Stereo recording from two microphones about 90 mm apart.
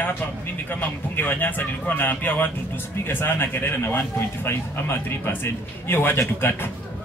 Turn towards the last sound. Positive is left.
turn(degrees=25)  # may be behind; listen again after turning